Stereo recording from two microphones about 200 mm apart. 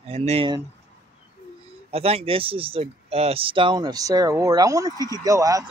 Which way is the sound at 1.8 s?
30° right (ahead or behind).